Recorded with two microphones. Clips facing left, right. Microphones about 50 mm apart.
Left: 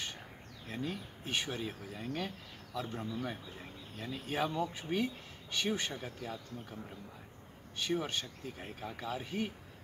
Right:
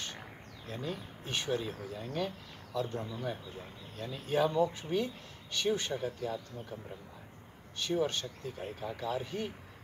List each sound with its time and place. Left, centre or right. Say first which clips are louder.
0.7 s speech: even; centre
7.8 s speech: right 3 dB; centre